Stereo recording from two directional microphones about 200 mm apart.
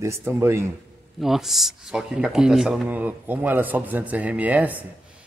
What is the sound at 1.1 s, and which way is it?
A man's voice, centre (ahead or behind).